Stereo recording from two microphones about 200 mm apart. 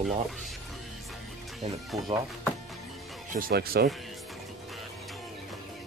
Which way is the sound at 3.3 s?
45° right (ahead or behind).